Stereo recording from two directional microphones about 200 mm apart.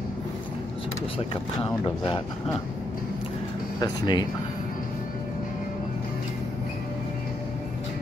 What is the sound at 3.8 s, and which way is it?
Speech, 20° left (ahead or behind).